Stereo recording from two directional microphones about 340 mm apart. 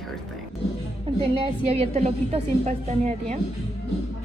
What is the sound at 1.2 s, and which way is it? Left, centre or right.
A woman's voice, centre.